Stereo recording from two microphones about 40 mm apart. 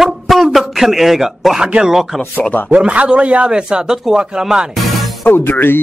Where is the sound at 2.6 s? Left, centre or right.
Right; by 4.7 s centre.